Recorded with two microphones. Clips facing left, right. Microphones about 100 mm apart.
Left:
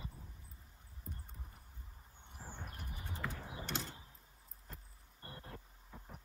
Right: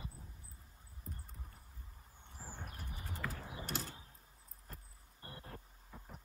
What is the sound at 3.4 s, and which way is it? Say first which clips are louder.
Mechanisms: even; centre (ahead or behind).